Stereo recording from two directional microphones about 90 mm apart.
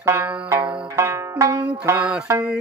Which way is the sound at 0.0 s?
30° right (ahead or behind).